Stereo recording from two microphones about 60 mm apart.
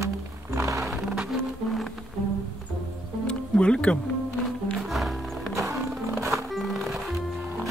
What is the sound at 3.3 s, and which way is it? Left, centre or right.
Music, centre.